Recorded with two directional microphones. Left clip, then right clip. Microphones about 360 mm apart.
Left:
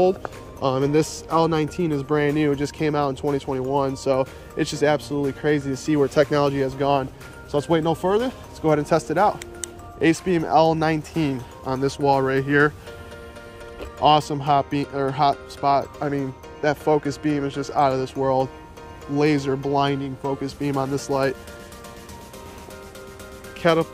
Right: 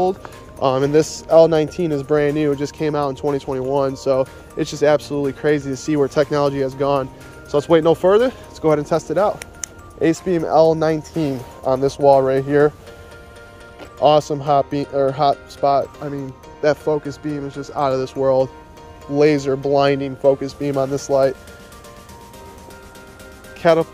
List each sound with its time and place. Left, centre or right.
0.0 s speech: centre
13.7 s speech: centre
23.6 s speech: centre